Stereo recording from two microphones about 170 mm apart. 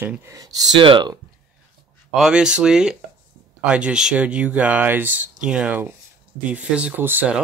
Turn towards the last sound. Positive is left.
turn(degrees=-10)  # may be behind; listen again after turning